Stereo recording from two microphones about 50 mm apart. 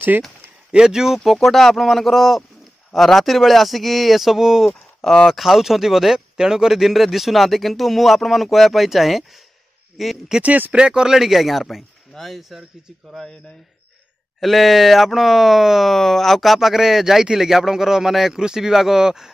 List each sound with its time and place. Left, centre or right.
0.7 s speech: centre
10.4 s speech: right
10.8 s speech: centre
14.4 s speech: centre